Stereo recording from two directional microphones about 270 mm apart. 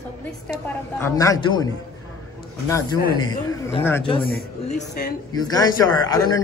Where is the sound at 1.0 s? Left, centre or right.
Centre.